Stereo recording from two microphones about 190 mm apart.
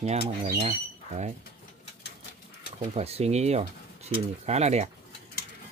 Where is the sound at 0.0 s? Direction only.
35° right (ahead or behind).